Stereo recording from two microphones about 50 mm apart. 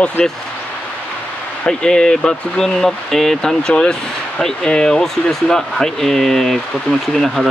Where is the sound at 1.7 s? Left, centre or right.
Centre.